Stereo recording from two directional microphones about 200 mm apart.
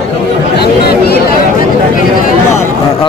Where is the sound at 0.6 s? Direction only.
50° left (ahead or behind).